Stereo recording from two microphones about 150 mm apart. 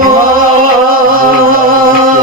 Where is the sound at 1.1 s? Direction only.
70° right (ahead or behind).